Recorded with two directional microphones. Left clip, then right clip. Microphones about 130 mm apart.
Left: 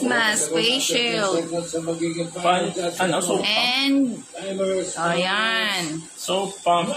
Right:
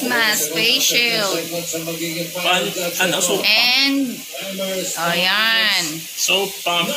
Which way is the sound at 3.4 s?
15° left (ahead or behind).